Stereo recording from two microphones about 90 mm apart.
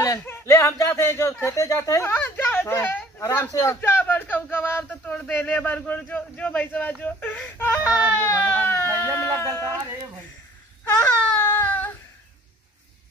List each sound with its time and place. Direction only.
0.2 s speech: 30° left (ahead or behind)
2.0 s speech: 20° left (ahead or behind)
3.8 s a sound: 20° left (ahead or behind)
11.0 s baby cry: 25° left (ahead or behind)